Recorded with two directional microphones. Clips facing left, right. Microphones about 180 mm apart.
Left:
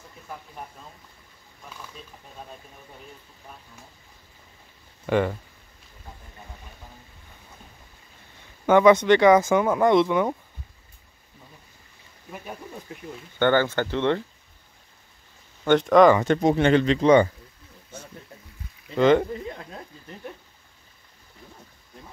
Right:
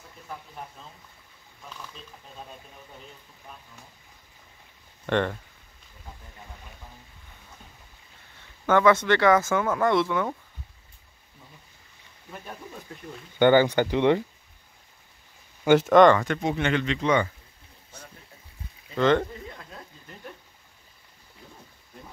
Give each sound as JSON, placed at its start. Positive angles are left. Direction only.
{"t": 5.0, "sound": "speech", "side_deg": 5}
{"t": 8.6, "sound": "speech", "side_deg": 15}
{"t": 12.3, "sound": "speech", "side_deg": 10}
{"t": 13.4, "sound": "speech", "side_deg": -15}
{"t": 15.6, "sound": "speech", "side_deg": -5}
{"t": 16.3, "sound": "speech", "side_deg": 35}
{"t": 18.9, "sound": "speech", "side_deg": 10}